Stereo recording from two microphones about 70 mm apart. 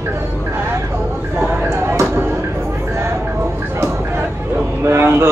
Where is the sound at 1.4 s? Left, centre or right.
Right.